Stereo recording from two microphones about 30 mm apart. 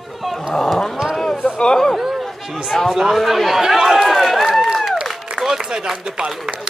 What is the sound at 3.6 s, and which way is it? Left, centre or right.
Run, centre.